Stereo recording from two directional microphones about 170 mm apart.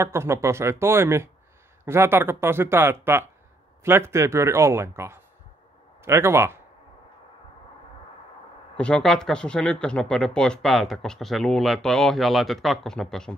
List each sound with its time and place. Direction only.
0.0 s speech: 15° right (ahead or behind)
8.7 s speech: 5° left (ahead or behind)